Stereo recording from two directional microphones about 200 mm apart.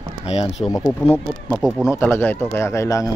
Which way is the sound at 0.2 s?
30° left (ahead or behind).